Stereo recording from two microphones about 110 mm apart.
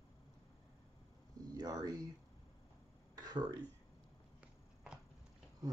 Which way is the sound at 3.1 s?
40° right (ahead or behind).